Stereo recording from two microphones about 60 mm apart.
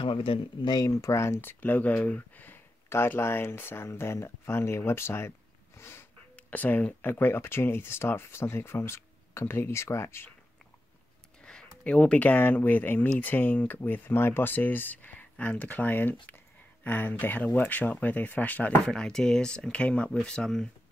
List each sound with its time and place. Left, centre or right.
0.7 s speech: left
1.1 s speech: left
1.5 s speech: left
3.2 s speech: left
5.8 s sniff: left
6.3 s speech: left
11.8 s speech: centre
12.2 s speech: left
18.9 s speech: centre